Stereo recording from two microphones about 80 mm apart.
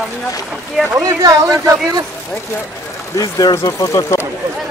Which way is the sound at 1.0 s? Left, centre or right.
Right.